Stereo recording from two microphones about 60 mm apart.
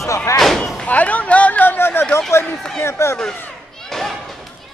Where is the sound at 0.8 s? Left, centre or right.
Left.